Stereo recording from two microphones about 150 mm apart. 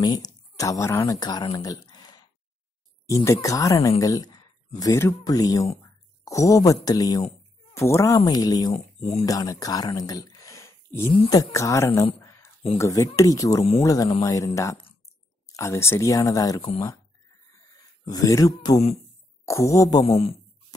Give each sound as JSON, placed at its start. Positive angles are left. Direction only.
{"t": 0.0, "sound": "speech", "side_deg": 25}
{"t": 3.3, "sound": "speech", "side_deg": 20}
{"t": 8.7, "sound": "speech", "side_deg": 45}
{"t": 9.2, "sound": "speech", "side_deg": 25}
{"t": 18.0, "sound": "speech", "side_deg": 25}
{"t": 20.0, "sound": "a man's voice", "side_deg": 40}